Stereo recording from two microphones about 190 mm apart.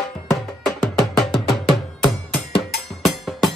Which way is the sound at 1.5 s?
Centre (ahead or behind).